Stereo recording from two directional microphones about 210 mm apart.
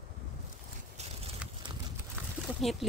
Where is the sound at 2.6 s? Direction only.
Centre (ahead or behind).